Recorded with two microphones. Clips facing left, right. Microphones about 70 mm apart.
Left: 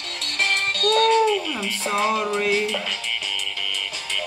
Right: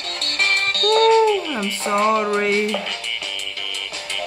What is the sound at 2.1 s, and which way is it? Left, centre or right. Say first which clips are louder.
Music: right 3 dB; right.